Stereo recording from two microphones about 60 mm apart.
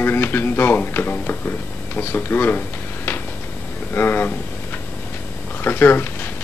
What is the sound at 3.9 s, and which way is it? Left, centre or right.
Speech, left.